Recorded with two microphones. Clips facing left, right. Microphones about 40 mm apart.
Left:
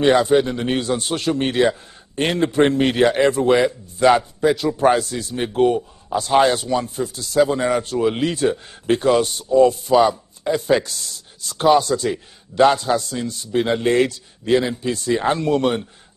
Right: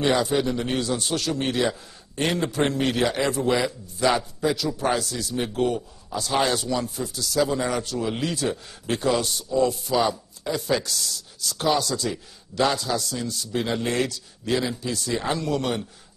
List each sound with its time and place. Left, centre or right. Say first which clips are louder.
0.0 s a man's voice: left 7 dB; left